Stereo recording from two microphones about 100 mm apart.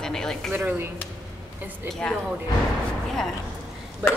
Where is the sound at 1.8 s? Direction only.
5° left (ahead or behind).